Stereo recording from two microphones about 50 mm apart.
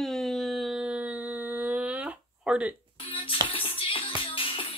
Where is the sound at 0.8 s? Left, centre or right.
Right.